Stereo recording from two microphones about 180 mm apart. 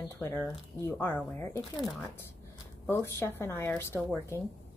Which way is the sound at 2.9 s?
15° left (ahead or behind).